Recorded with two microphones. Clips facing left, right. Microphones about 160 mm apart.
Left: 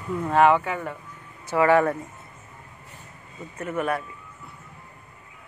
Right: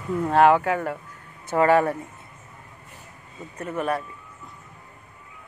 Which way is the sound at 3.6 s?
35° right (ahead or behind).